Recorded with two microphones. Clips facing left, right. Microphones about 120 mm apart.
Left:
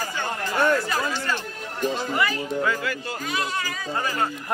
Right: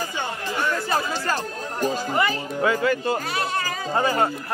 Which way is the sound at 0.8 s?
35° right (ahead or behind).